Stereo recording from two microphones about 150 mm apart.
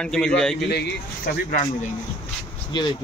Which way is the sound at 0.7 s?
85° left.